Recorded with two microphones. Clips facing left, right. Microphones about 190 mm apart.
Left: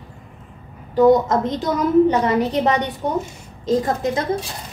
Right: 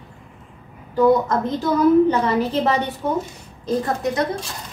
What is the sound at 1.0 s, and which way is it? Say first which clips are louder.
A woman's voice: left 2 dB; 20° left (ahead or behind).